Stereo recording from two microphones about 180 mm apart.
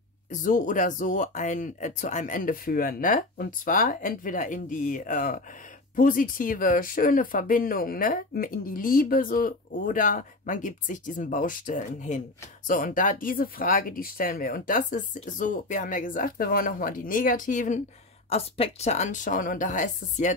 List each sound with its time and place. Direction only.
0.3 s speech: 50° left (ahead or behind)